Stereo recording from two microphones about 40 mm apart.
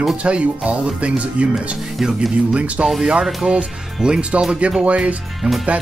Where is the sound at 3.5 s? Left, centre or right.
Right.